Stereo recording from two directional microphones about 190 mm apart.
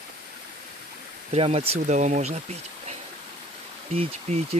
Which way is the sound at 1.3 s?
35° right (ahead or behind).